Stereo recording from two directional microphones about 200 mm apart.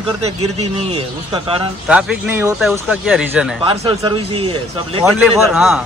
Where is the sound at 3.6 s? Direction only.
25° right (ahead or behind).